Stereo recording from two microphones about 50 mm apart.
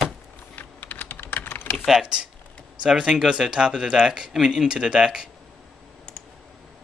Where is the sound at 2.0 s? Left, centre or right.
Centre.